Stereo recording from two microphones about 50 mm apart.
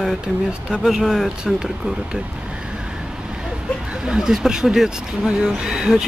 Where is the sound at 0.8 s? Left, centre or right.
Centre.